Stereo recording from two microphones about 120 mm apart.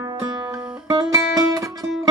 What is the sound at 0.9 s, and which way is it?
Music, 30° right (ahead or behind).